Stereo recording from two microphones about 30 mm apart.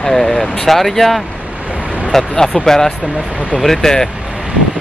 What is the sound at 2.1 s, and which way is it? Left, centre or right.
Speech, centre.